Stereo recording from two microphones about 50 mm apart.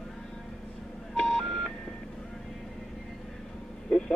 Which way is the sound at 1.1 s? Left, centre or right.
Centre.